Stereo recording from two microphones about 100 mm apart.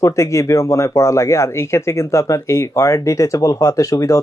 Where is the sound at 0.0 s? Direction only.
30° left (ahead or behind).